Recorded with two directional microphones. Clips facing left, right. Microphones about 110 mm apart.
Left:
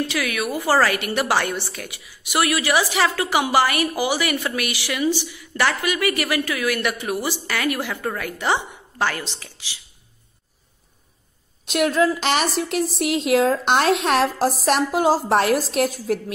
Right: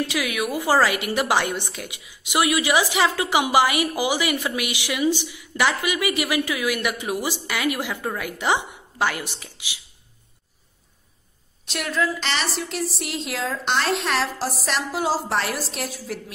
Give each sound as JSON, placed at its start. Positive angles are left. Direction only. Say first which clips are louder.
{"t": 0.1, "sound": "a woman's voice", "louder": "left 1 dB", "side_deg": -15}
{"t": 11.6, "sound": "a woman's voice", "louder": "left 6 dB", "side_deg": 50}